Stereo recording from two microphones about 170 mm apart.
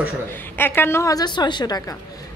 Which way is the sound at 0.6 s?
10° left (ahead or behind).